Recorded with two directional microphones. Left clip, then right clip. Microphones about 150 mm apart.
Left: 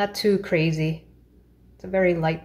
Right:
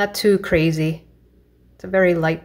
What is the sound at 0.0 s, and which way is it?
Speech, 30° right (ahead or behind).